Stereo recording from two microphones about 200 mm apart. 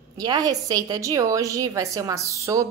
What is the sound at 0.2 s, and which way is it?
Speech, 20° right (ahead or behind).